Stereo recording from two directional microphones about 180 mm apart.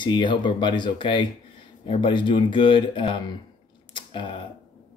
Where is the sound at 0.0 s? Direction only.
25° left (ahead or behind).